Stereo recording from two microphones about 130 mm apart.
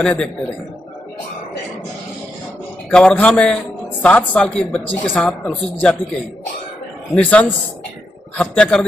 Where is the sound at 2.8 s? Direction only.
5° left (ahead or behind).